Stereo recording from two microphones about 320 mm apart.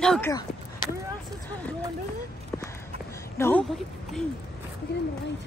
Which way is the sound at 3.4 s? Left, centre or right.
Centre.